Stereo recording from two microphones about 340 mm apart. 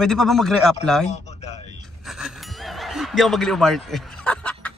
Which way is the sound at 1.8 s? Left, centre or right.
Centre.